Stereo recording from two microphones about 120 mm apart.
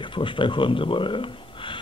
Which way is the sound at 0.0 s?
45° left (ahead or behind).